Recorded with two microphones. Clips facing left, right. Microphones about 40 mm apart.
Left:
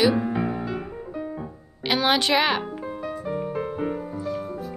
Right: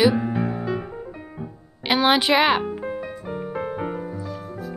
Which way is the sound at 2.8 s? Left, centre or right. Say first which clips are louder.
Right 1 dB; right.